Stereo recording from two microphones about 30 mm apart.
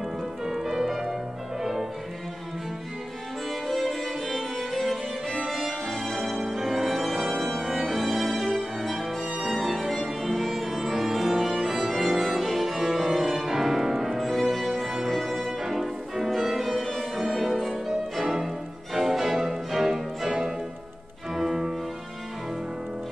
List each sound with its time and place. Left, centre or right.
0.5 s music: centre
3.6 s music: centre
9.5 s violin: centre
10.5 s music: centre
20.2 s music: right
21.4 s music: centre